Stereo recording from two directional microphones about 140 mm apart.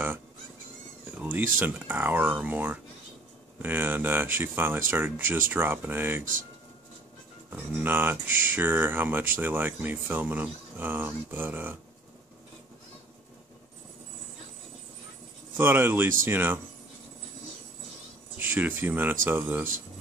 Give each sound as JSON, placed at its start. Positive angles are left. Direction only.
{"t": 1.1, "sound": "a sound", "side_deg": -15}
{"t": 1.6, "sound": "speech", "side_deg": -15}
{"t": 7.5, "sound": "speech", "side_deg": -15}
{"t": 15.5, "sound": "speech", "side_deg": -15}
{"t": 18.4, "sound": "speech", "side_deg": -15}